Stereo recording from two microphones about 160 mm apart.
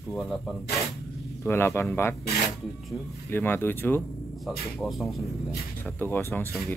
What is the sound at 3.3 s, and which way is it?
Speech, 15° left (ahead or behind).